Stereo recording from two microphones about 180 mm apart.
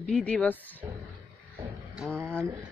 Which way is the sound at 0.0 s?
5° left (ahead or behind).